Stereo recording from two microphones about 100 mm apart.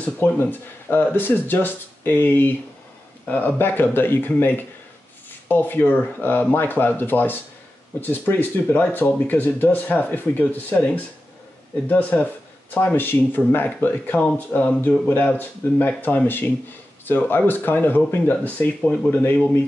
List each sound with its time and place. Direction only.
0.0 s speech: 20° left (ahead or behind)